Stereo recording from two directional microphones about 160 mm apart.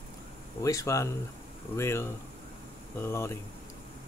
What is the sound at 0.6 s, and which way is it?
Speech, 20° left (ahead or behind).